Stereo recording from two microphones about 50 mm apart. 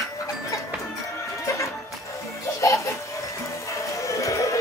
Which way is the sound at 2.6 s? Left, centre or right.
Left.